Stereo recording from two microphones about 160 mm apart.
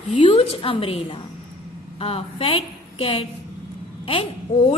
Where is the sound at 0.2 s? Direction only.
35° left (ahead or behind).